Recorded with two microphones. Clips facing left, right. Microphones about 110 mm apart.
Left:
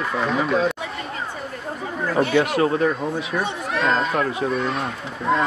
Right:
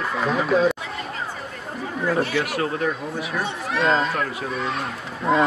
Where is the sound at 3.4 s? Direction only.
Centre (ahead or behind).